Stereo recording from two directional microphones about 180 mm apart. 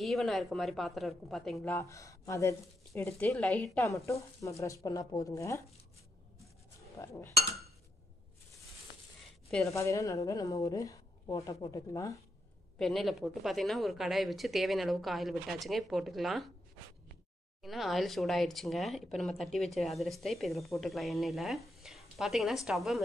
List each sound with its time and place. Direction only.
0.0 s speech: centre (ahead or behind); by 5.6 s 15° left (ahead or behind)
7.0 s speech: 15° left (ahead or behind)
9.7 s speech: 15° left (ahead or behind)
12.7 s a woman's voice: centre (ahead or behind)
17.6 s a woman's voice: centre (ahead or behind)